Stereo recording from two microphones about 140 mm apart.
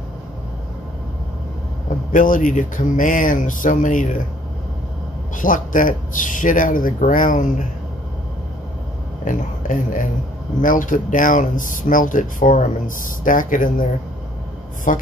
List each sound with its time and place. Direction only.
2.1 s speech: 70° left (ahead or behind)
5.3 s speech: 70° left (ahead or behind)
9.2 s speech: 65° left (ahead or behind)
14.9 s a woman's voice: 65° left (ahead or behind)